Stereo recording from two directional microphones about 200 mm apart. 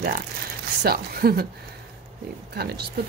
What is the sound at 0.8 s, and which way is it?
Speech, 50° right (ahead or behind).